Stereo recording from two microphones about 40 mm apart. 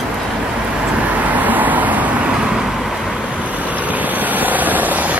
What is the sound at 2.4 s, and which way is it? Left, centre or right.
Vehicle, centre.